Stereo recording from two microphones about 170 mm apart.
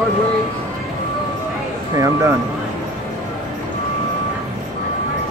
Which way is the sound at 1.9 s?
20° right (ahead or behind).